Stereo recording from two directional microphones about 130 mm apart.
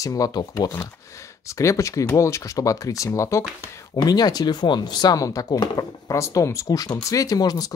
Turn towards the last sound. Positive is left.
turn(degrees=30)  # may be behind; listen again after turning